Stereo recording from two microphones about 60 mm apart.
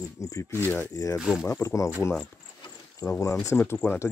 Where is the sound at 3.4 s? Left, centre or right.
Left.